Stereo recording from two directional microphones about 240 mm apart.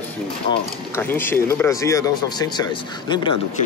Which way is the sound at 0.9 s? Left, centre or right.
Centre.